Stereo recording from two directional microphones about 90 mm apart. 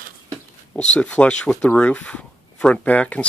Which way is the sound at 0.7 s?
10° left (ahead or behind).